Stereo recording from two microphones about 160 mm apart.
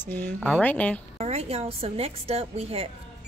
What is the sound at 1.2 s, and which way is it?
A woman's voice, 40° right (ahead or behind).